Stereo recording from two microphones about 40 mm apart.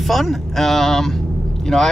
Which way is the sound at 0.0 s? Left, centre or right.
Centre.